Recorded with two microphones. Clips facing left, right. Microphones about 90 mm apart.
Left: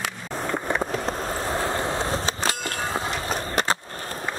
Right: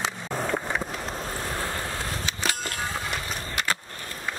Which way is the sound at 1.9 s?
30° left (ahead or behind).